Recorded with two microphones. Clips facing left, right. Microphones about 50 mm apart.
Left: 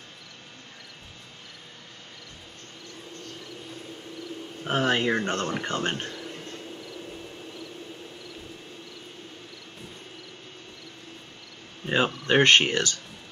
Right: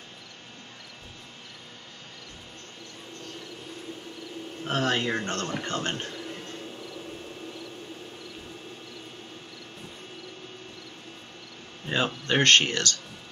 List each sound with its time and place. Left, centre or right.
4.6 s speech: centre
11.8 s speech: centre